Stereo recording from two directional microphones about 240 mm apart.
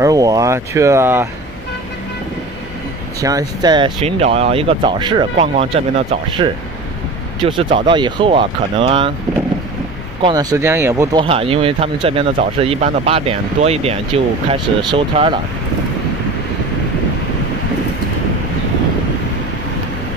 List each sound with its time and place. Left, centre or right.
0.0 s speech: centre
3.2 s speech: centre
10.2 s speech: centre
11.2 s speech: right